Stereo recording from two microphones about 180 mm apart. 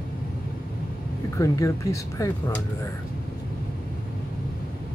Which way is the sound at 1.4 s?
15° left (ahead or behind).